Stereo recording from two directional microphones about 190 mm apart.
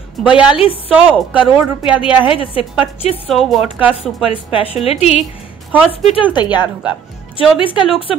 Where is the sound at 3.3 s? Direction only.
Centre (ahead or behind).